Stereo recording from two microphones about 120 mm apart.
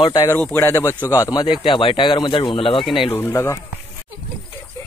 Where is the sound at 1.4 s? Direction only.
45° left (ahead or behind).